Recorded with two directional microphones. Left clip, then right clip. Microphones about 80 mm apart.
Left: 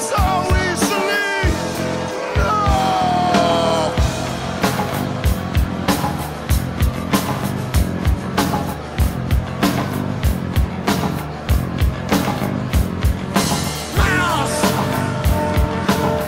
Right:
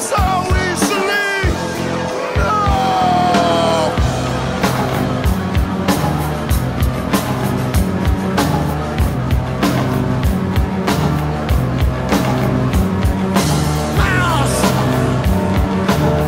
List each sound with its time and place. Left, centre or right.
0.1 s music: left
2.4 s music: left
13.3 s music: left